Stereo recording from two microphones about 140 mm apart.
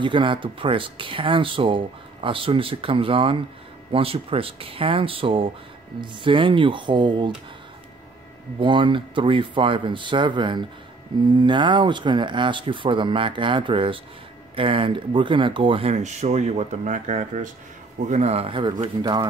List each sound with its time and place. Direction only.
0.0 s speech: 35° right (ahead or behind)
8.5 s speech: 35° right (ahead or behind)